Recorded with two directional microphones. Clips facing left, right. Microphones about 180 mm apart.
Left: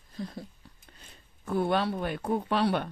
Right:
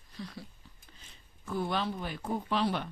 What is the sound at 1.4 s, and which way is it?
Speech, 55° left (ahead or behind).